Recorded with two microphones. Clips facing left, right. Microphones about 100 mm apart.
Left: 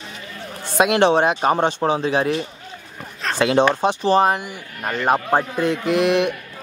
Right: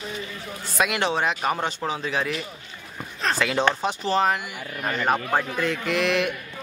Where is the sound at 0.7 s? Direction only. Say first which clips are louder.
Left 8 dB; 25° left (ahead or behind).